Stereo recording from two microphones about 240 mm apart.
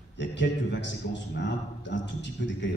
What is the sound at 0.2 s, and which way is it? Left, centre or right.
A man's voice, left.